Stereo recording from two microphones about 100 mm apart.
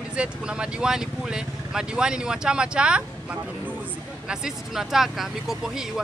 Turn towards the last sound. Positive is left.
turn(degrees=-5)  # may be behind; listen again after turning